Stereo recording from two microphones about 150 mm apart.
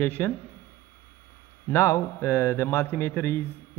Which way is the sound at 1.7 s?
20° left (ahead or behind).